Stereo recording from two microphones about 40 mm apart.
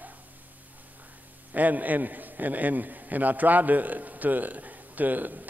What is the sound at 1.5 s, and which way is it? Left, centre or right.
A man's voice, right.